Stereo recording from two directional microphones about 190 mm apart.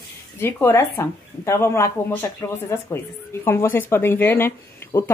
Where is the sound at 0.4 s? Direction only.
10° left (ahead or behind).